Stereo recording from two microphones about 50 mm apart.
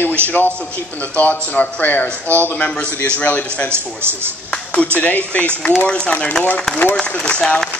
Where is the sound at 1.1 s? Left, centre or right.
Left.